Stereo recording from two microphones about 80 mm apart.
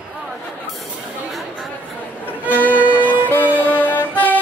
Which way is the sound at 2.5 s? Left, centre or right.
Left.